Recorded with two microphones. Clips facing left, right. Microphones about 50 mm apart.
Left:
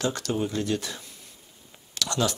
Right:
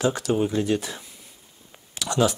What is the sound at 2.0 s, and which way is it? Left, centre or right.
Speech, centre.